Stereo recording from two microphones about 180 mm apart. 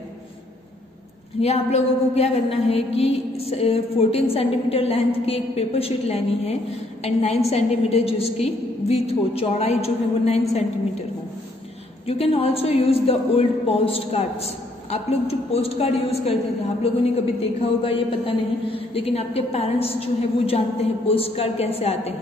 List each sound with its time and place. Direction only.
1.4 s a man's voice: 35° left (ahead or behind)
12.1 s a man's voice: 30° left (ahead or behind)